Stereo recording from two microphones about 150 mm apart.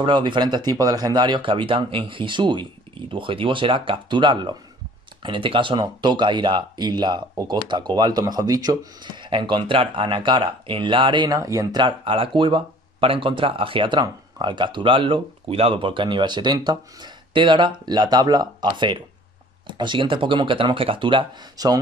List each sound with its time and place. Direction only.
0.0 s speech: 30° right (ahead or behind)